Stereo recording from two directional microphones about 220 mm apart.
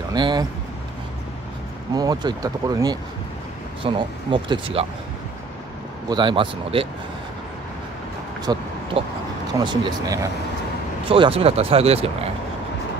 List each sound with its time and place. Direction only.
0.1 s speech: 20° right (ahead or behind)
2.0 s speech: 15° right (ahead or behind)
6.0 s speech: 20° right (ahead or behind)
8.5 s speech: 15° right (ahead or behind)